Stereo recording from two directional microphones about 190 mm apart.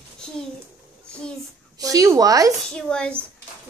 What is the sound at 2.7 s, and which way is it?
Speech, 5° left (ahead or behind).